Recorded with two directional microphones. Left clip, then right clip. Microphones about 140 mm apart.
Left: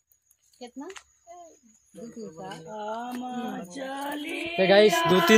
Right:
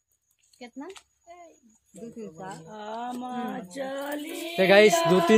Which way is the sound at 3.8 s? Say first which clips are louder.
Right 1 dB; 60° left (ahead or behind).